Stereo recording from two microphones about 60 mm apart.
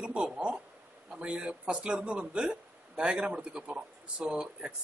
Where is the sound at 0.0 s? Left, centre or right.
Centre.